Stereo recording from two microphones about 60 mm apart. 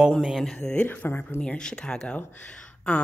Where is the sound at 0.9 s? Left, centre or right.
Left.